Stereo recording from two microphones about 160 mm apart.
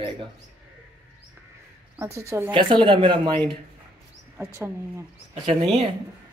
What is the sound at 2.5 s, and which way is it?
Speech, 30° right (ahead or behind).